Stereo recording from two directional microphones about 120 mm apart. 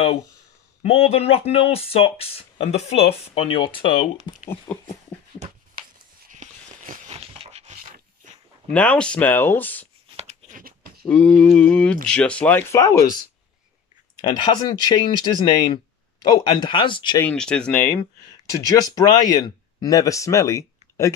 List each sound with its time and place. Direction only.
0.8 s speech: 55° left (ahead or behind)
4.7 s speech: 15° left (ahead or behind)
6.3 s a sound: 90° right
7.2 s a sound: 60° right (ahead or behind)
8.6 s speech: 10° left (ahead or behind)
11.1 s speech: 10° left (ahead or behind)
12.7 s speech: 25° left (ahead or behind)
14.2 s speech: 40° left (ahead or behind)
17.2 s speech: 10° left (ahead or behind)
18.8 s speech: 30° left (ahead or behind)